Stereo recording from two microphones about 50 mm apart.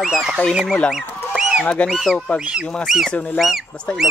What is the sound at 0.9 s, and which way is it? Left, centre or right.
Chicken, centre.